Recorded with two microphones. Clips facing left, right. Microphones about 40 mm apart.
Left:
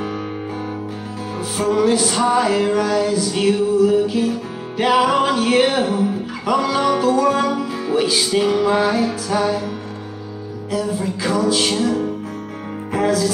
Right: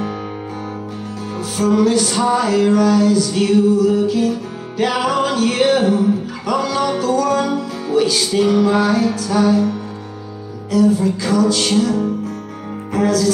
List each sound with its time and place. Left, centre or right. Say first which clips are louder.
1.6 s music: right 2 dB; centre